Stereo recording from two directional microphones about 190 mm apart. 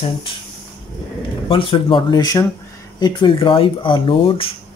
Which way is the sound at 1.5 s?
25° left (ahead or behind).